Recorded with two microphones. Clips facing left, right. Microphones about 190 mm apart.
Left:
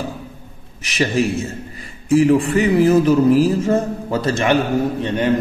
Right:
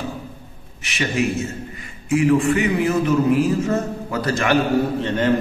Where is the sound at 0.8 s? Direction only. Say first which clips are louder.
Left 3 dB; 35° left (ahead or behind).